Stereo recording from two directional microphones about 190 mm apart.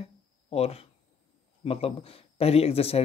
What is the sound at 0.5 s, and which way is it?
Speech, 30° left (ahead or behind).